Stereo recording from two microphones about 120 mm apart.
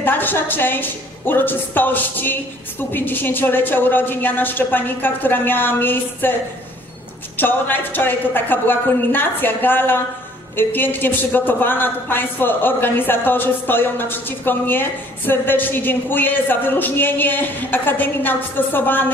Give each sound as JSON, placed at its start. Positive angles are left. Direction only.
{"t": 0.0, "sound": "a woman's voice", "side_deg": 15}
{"t": 7.3, "sound": "a woman's voice", "side_deg": 15}